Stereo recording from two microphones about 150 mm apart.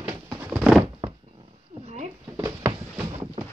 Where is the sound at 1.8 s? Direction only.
50° right (ahead or behind).